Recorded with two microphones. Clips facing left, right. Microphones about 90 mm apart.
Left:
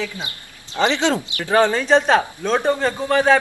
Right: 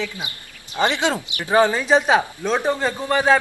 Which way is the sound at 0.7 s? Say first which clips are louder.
Left 2 dB; 15° right (ahead or behind).